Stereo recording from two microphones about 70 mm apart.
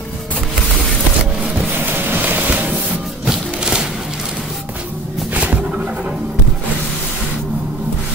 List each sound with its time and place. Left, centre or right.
1.9 s music: right
3.3 s music: centre
5.3 s music: right